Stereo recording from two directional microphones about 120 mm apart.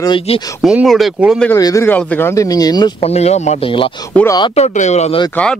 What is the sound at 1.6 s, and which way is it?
Speech, 30° left (ahead or behind).